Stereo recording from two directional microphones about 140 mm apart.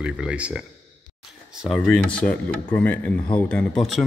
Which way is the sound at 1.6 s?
Centre (ahead or behind).